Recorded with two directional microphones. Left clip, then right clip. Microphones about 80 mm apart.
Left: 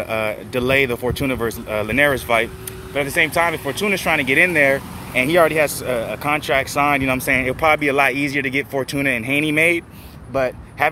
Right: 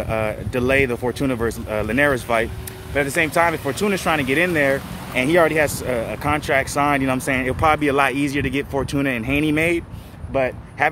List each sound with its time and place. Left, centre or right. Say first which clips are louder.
0.0 s speech: left 1 dB; right
2.9 s speech: left 1 dB; right
4.2 s speech: left 4 dB; right